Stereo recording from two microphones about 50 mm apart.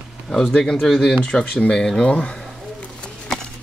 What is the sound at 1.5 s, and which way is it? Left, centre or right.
Speech, left.